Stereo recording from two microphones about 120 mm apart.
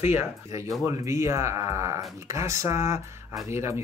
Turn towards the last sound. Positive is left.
turn(degrees=-20)  # may be behind; listen again after turning